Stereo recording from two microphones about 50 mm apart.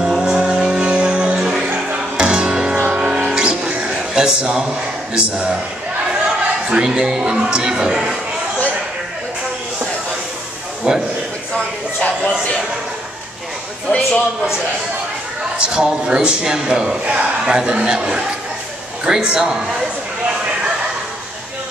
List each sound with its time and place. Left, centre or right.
0.0 s vehicle: centre
0.4 s music: right
2.9 s vehicle: centre
3.3 s music: centre
4.1 s a sound: centre
5.1 s a man's voice: centre
6.7 s a man's voice: centre
10.9 s a sound: right
13.8 s a man's voice: left
15.6 s a man's voice: centre
20.2 s a sound: centre